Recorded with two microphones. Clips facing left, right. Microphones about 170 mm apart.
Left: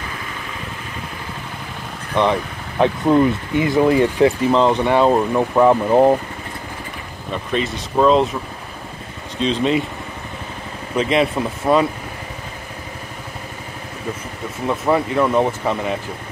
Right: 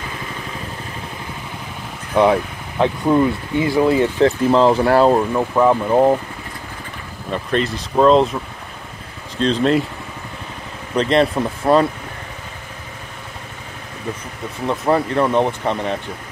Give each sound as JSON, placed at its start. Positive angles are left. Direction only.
{"t": 2.1, "sound": "speech", "side_deg": -5}
{"t": 2.8, "sound": "speech", "side_deg": 20}
{"t": 4.4, "sound": "speech", "side_deg": 0}
{"t": 7.3, "sound": "speech", "side_deg": 0}
{"t": 9.4, "sound": "speech", "side_deg": 0}
{"t": 11.0, "sound": "speech", "side_deg": 5}
{"t": 14.7, "sound": "speech", "side_deg": 0}